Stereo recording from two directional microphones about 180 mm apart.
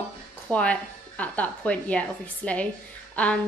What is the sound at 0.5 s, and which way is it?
Speech, 5° left (ahead or behind).